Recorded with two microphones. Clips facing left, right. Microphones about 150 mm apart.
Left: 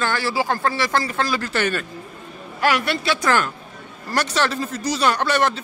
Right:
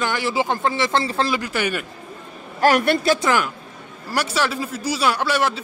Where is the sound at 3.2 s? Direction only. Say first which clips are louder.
Even; 15° right (ahead or behind).